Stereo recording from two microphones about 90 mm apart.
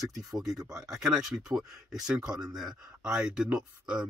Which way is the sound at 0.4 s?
5° right (ahead or behind).